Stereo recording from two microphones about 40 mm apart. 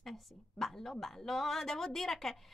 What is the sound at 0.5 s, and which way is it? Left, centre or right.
Speech, centre.